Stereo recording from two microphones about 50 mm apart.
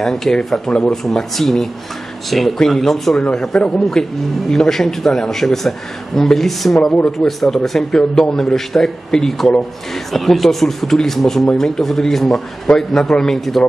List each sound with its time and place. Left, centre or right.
0.0 s speech: centre
1.1 s speech: centre
3.3 s speech: centre